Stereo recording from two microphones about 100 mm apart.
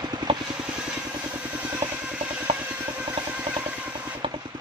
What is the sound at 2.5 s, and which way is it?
Vehicle, 90° right.